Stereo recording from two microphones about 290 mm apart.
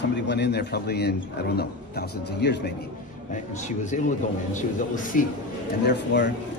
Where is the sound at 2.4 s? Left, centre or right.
Left.